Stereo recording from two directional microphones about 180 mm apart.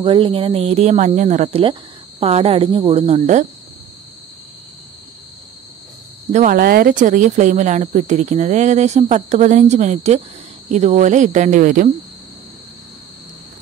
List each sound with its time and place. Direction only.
0.0 s speech: 30° right (ahead or behind)
6.3 s speech: 50° right (ahead or behind)